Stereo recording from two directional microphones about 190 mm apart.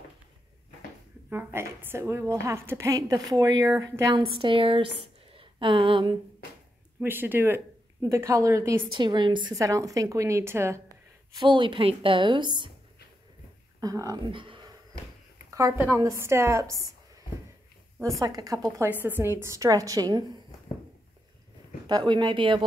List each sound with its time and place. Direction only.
1.3 s a woman's voice: 10° right (ahead or behind)
4.2 s a woman's voice: 25° right (ahead or behind)
7.0 s a woman's voice: 10° right (ahead or behind)
13.7 s speech: 20° right (ahead or behind)
15.5 s a woman's voice: 15° right (ahead or behind)
18.2 s a woman's voice: 20° right (ahead or behind)
21.8 s a woman's voice: 25° right (ahead or behind)